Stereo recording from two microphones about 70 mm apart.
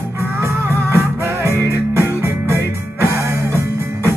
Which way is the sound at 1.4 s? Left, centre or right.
Right.